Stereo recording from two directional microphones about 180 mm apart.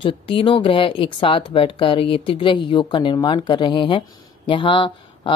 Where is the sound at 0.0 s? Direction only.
30° left (ahead or behind).